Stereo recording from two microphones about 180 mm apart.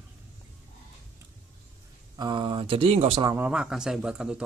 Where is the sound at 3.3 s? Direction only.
10° right (ahead or behind).